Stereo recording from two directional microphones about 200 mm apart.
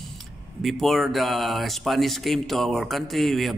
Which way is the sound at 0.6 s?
Centre (ahead or behind).